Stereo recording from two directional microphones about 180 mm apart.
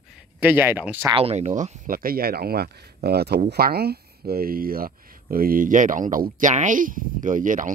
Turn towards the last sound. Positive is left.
turn(degrees=-45)  # may be behind; listen again after turning